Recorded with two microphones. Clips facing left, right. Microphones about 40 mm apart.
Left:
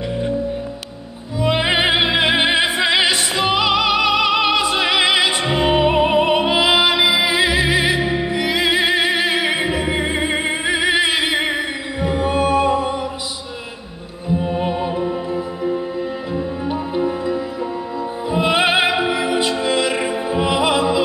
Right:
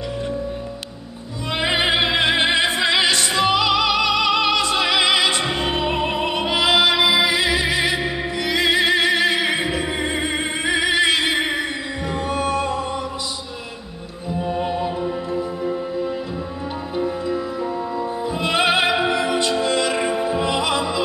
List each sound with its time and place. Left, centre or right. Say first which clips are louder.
1.4 s music: left 4 dB; centre
14.6 s music: left 2 dB; centre
16.9 s music: left 1 dB; centre
20.1 s opera: left 1 dB; centre